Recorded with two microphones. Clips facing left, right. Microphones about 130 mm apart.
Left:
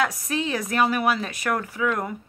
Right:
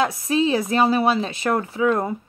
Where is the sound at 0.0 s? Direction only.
25° right (ahead or behind).